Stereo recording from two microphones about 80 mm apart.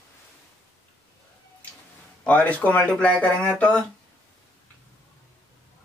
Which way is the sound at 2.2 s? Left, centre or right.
Left.